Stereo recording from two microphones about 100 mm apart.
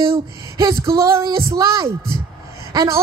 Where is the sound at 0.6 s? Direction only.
35° right (ahead or behind).